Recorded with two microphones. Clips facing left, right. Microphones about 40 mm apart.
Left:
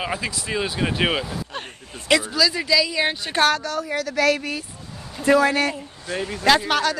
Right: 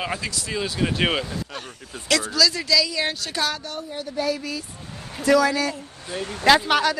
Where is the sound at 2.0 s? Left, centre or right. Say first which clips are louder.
Left 2 dB; centre.